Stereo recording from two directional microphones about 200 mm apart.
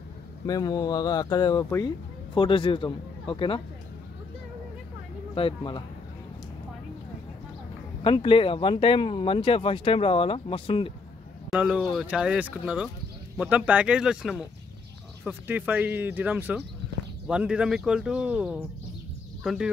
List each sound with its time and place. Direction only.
0.5 s speech: 20° left (ahead or behind)
5.3 s speech: 25° left (ahead or behind)
8.0 s speech: 25° left (ahead or behind)
11.5 s speech: 5° right (ahead or behind)